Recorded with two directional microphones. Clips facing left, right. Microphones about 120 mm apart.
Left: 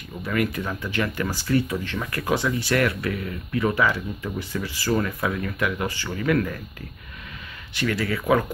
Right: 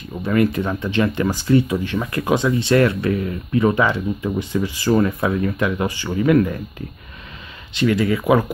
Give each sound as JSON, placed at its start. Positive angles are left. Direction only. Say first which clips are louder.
{"t": 0.2, "sound": "speech", "louder": "right 7 dB", "side_deg": -25}
{"t": 5.9, "sound": "speech", "louder": "right 6 dB", "side_deg": -15}
{"t": 7.7, "sound": "speech", "louder": "right 7 dB", "side_deg": -20}